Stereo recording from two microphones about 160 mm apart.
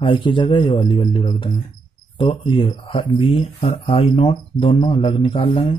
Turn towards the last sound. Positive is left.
turn(degrees=35)  # may be behind; listen again after turning